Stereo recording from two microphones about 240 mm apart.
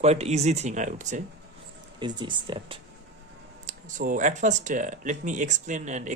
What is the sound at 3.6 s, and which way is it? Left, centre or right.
Speech, right.